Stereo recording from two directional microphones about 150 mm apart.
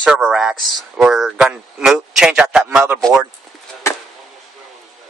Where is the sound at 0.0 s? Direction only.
5° right (ahead or behind).